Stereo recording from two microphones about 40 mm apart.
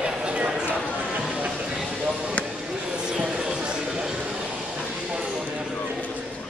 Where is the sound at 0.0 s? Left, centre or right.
Right.